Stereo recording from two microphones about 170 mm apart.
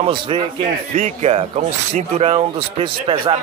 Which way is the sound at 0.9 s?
40° right (ahead or behind).